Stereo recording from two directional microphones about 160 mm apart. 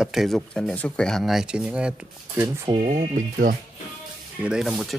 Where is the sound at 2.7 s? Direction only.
40° right (ahead or behind).